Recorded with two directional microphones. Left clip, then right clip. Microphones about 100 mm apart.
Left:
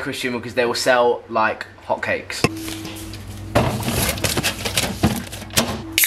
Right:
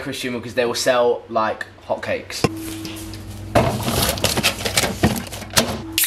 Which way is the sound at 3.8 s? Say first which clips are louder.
Right 2 dB; 15° right (ahead or behind).